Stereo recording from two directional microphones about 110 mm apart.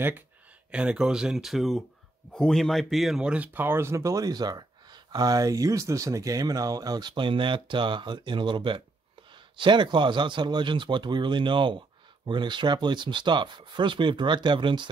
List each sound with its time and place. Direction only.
0.7 s speech: 10° right (ahead or behind); by 14.9 s 45° right (ahead or behind)